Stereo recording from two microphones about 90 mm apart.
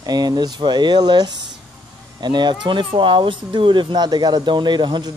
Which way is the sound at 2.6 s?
65° right (ahead or behind).